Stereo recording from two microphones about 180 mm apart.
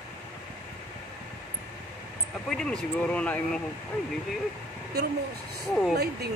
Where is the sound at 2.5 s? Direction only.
5° left (ahead or behind).